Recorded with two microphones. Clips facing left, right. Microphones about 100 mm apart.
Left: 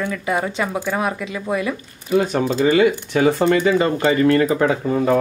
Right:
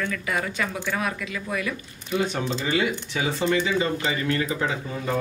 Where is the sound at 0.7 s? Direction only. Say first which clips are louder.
Left 6 dB; 45° left (ahead or behind).